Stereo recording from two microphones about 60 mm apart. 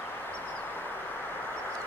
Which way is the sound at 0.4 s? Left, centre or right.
Left.